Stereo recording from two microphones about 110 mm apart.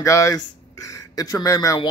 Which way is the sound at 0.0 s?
30° left (ahead or behind).